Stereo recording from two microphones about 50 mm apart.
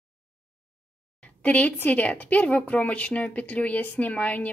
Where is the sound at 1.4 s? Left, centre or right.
Left.